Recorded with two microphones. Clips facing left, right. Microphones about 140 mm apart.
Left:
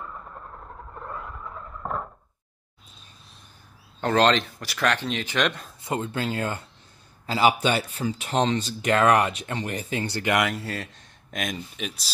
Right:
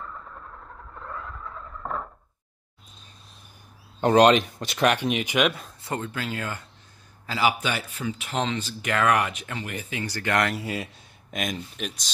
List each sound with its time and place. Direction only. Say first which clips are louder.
0.0 s vehicle: left 1 dB; 15° left (ahead or behind)
0.9 s a sound: left 1 dB; 15° left (ahead or behind)
4.0 s speech: right 4 dB; 15° right (ahead or behind)
5.9 s speech: left 3 dB; 25° left (ahead or behind)
10.1 s speech: even; 15° left (ahead or behind)
10.5 s speech: right 1 dB; 10° right (ahead or behind)